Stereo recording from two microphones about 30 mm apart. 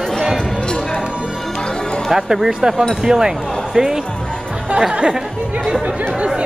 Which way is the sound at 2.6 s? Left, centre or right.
Right.